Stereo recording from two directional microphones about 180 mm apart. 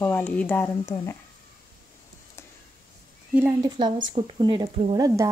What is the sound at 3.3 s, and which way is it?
Speech, 10° right (ahead or behind).